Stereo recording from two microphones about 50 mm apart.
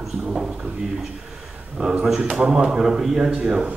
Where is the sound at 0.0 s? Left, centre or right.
Centre.